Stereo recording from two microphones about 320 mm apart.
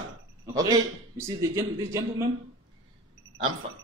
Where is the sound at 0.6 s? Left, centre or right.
Centre.